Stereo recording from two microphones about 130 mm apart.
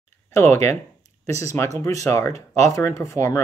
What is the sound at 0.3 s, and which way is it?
Speech, 20° left (ahead or behind).